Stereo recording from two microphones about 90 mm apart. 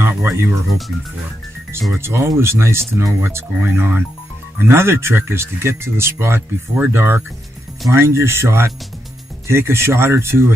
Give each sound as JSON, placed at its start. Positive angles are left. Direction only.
{"t": 0.0, "sound": "music", "side_deg": -25}
{"t": 2.0, "sound": "speech", "side_deg": -30}